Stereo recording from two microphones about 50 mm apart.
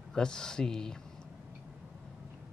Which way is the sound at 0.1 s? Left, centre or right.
Centre.